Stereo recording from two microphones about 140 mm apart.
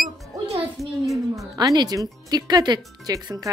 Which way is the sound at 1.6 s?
30° right (ahead or behind).